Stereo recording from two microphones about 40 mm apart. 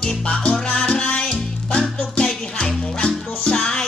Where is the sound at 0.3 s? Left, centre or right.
Left.